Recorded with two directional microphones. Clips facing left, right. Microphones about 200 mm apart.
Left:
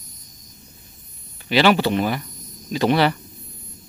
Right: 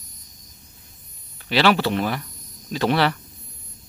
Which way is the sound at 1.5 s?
Centre (ahead or behind).